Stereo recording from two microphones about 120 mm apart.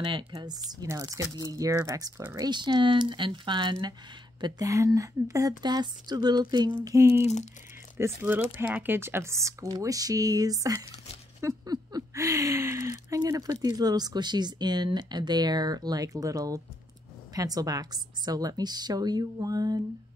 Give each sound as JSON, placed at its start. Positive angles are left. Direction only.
{"t": 0.0, "sound": "speech", "side_deg": -45}
{"t": 7.2, "sound": "speech", "side_deg": 70}
{"t": 8.0, "sound": "speech", "side_deg": -15}